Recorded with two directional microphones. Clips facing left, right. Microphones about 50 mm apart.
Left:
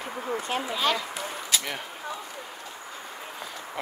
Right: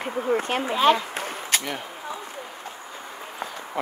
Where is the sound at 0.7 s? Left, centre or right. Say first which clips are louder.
Right 8 dB; right.